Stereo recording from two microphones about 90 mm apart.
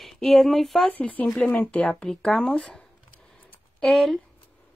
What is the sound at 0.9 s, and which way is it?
Speech, 15° left (ahead or behind).